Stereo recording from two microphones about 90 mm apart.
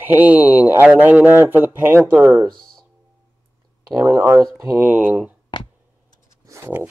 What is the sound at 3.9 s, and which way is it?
Speech, 35° right (ahead or behind).